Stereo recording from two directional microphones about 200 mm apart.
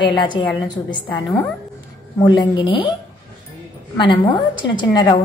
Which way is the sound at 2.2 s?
20° left (ahead or behind).